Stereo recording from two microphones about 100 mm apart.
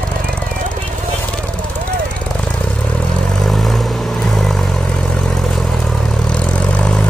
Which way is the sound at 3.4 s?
Centre (ahead or behind).